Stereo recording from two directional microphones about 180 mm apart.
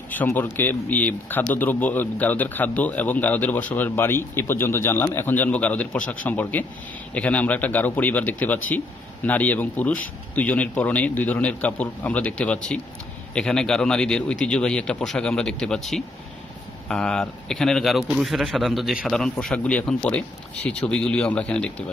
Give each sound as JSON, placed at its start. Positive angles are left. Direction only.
{"t": 0.1, "sound": "speech", "side_deg": 10}